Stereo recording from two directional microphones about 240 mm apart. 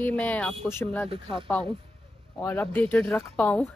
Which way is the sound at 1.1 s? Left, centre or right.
Right.